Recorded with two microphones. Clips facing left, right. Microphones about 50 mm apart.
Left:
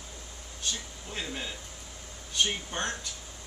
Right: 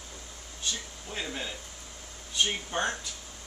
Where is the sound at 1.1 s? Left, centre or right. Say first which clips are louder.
Right 1 dB; centre.